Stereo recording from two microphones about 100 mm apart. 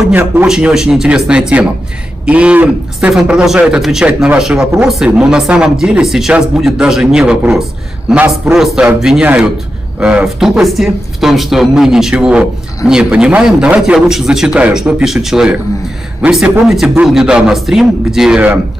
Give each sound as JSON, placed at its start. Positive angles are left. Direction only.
{"t": 0.1, "sound": "a man's voice", "side_deg": -20}
{"t": 0.5, "sound": "speech", "side_deg": -5}
{"t": 8.5, "sound": "a man's voice", "side_deg": -5}